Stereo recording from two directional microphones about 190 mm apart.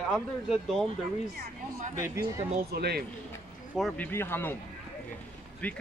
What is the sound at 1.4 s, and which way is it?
Speech, 40° right (ahead or behind).